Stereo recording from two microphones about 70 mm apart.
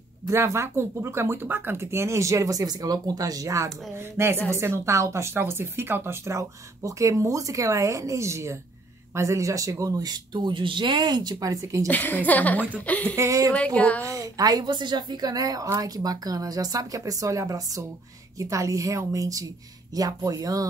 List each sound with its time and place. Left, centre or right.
0.3 s speech: right
3.9 s speech: right
11.4 s speech: right
11.9 s a woman's voice: left
13.1 s speech: right
13.7 s a woman's voice: left
14.0 s a woman's voice: right